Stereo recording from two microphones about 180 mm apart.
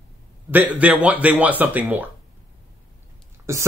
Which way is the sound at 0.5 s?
10° right (ahead or behind).